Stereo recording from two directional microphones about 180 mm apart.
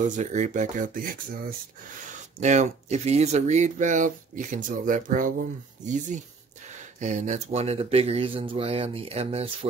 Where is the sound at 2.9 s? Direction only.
40° right (ahead or behind).